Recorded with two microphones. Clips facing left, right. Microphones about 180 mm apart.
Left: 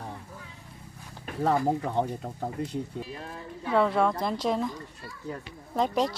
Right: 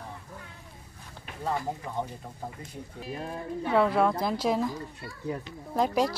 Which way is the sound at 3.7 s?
Centre (ahead or behind).